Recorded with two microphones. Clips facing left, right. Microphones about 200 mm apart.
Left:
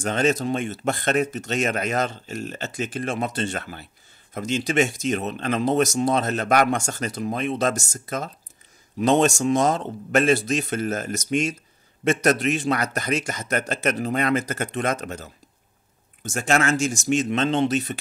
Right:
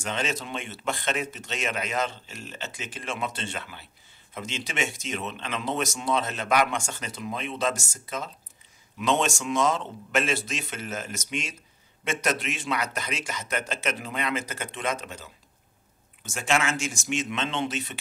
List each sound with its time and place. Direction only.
0.0 s speech: 45° left (ahead or behind)